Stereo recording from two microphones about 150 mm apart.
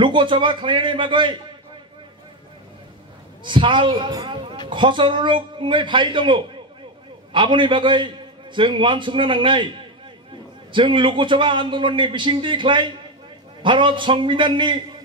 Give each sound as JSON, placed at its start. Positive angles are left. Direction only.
{"t": 0.0, "sound": "a man's voice", "side_deg": -30}
{"t": 3.4, "sound": "a man's voice", "side_deg": -30}
{"t": 10.7, "sound": "a man's voice", "side_deg": -35}